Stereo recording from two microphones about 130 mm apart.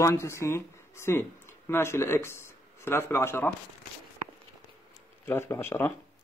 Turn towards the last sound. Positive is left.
turn(degrees=15)  # may be behind; listen again after turning